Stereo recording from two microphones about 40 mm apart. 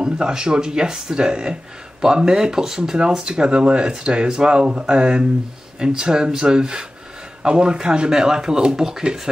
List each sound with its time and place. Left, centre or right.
0.0 s speech: centre